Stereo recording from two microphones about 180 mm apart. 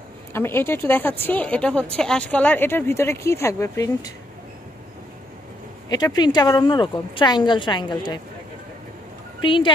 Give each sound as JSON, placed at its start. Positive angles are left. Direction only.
{"t": 0.3, "sound": "speech", "side_deg": 10}
{"t": 5.9, "sound": "speech", "side_deg": 20}
{"t": 9.4, "sound": "speech", "side_deg": 25}